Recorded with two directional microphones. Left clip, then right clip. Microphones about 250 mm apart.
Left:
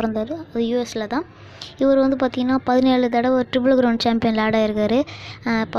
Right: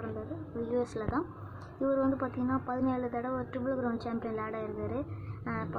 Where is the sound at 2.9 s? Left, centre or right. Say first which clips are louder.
Left 16 dB; left.